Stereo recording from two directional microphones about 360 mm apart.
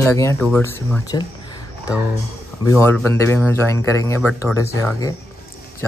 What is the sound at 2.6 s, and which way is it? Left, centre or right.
A man's voice, centre.